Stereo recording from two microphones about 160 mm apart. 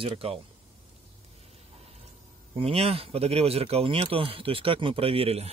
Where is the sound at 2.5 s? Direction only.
40° right (ahead or behind).